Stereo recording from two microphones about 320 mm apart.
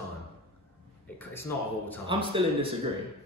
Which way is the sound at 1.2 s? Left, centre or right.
Centre.